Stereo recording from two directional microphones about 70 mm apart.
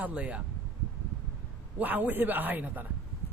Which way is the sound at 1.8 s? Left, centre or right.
Right.